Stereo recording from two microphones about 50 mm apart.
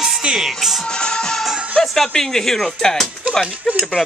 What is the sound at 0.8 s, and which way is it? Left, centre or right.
Speech, centre.